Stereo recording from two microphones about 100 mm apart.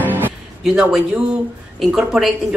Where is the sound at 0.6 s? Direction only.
5° right (ahead or behind).